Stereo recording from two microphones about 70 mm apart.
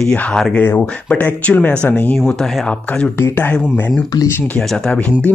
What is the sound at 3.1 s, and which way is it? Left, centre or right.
Speech, left.